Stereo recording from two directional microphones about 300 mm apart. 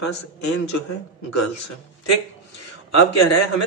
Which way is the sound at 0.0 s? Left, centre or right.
Left.